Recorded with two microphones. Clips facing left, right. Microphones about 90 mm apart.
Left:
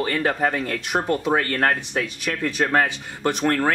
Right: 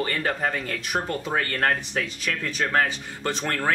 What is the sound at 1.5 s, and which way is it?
Speech, 20° left (ahead or behind).